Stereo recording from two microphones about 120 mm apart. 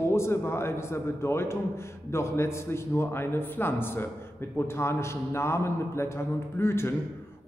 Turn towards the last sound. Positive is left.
turn(degrees=20)  # may be behind; listen again after turning